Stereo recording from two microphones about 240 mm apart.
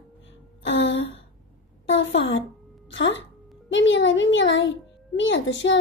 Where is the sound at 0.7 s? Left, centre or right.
Left.